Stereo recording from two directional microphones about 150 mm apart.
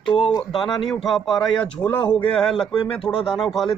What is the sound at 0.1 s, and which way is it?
Speech, 30° left (ahead or behind).